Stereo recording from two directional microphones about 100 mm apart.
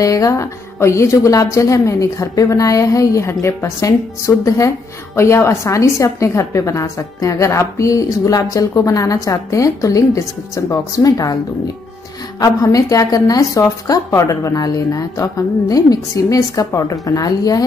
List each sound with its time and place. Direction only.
0.0 s a woman's voice: 35° left (ahead or behind)